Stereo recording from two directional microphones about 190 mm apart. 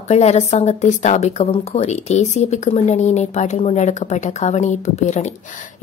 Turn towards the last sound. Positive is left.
turn(degrees=40)  # may be behind; listen again after turning